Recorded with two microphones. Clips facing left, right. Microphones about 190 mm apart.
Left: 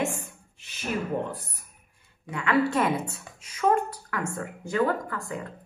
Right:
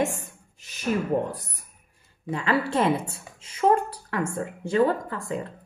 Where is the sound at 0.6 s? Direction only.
40° right (ahead or behind).